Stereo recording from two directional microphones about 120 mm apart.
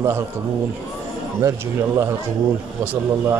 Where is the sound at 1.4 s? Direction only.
25° right (ahead or behind).